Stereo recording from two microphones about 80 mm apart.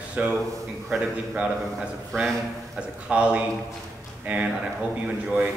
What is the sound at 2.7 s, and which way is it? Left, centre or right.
A man's voice, centre.